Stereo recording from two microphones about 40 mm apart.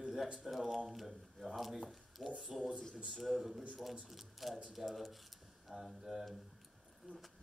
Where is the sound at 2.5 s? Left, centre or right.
Centre.